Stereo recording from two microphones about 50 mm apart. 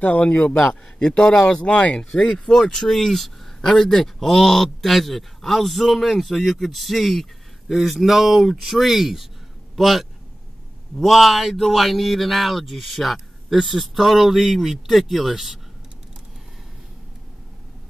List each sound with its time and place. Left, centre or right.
0.0 s a man's voice: left
2.3 s speech: centre